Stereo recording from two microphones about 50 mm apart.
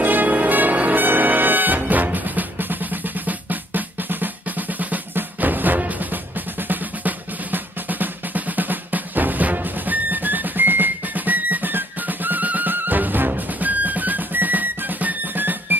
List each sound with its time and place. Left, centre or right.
0.0 s music: right
6.7 s drum: right